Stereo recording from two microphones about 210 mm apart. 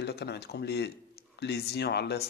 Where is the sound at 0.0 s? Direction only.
50° left (ahead or behind).